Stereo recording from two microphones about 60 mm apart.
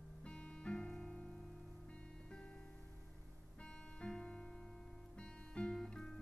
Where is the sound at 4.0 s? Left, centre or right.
Centre.